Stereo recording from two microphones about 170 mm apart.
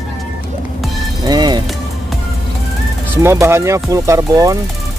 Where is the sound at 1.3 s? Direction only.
25° right (ahead or behind).